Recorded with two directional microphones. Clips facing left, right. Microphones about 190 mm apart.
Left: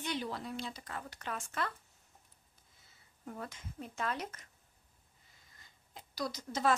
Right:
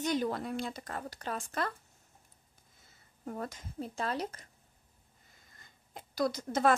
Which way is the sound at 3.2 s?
45° right (ahead or behind).